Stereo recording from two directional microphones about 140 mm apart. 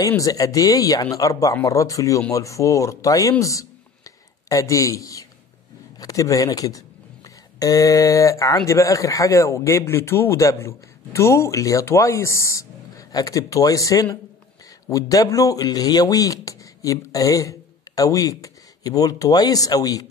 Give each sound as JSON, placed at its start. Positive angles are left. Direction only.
{"t": 0.2, "sound": "speech", "side_deg": 25}